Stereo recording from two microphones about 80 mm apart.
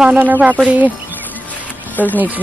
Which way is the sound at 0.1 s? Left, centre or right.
Right.